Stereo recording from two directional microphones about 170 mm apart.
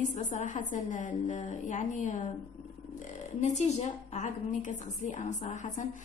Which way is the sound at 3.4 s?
40° left (ahead or behind).